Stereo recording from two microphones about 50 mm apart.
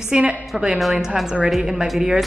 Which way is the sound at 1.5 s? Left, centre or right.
Centre.